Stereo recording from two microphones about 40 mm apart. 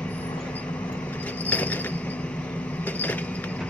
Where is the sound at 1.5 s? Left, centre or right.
Left.